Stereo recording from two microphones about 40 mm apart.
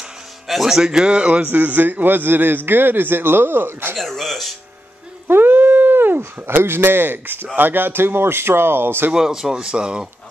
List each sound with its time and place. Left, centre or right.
0.5 s a man's voice: centre; by 1.5 s right
1.5 s a man's voice: right
3.9 s speech: centre
5.3 s a sound: right
6.4 s speech: right
9.1 s a man's voice: centre